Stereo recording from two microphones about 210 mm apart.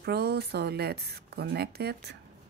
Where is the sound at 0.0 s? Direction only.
50° right (ahead or behind).